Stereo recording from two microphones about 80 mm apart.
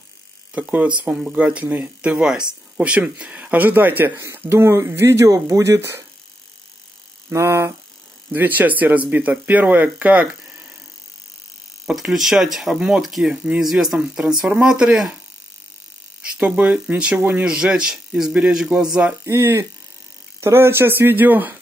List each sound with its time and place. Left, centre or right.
0.5 s speech: centre
4.2 s speech: right
7.2 s speech: right
8.3 s speech: right
11.8 s speech: centre
16.3 s speech: centre
19.2 s speech: right